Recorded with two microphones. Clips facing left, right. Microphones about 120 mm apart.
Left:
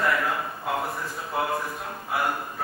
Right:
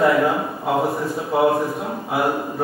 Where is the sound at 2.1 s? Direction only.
25° right (ahead or behind).